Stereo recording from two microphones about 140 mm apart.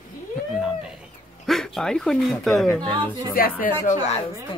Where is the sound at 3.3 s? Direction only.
85° left.